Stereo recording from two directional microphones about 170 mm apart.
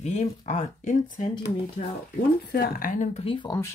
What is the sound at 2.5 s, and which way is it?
Speech, 60° left (ahead or behind).